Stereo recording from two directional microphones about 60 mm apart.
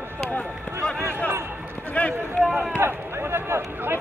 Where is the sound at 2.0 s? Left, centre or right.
Left.